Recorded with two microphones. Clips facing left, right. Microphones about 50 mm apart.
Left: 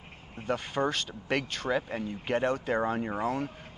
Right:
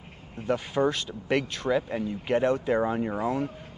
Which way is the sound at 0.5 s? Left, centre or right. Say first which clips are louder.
Right 4 dB; centre.